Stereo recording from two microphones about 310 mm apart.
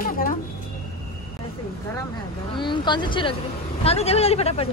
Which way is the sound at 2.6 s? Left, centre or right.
Centre.